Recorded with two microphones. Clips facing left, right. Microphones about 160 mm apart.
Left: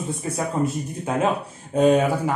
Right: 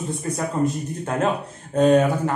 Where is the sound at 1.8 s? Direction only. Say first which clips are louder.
Right 1 dB; 10° left (ahead or behind).